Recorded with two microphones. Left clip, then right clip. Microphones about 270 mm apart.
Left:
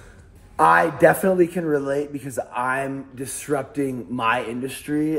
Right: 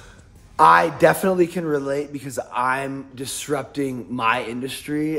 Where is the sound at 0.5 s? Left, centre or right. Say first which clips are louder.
Right 2 dB; centre.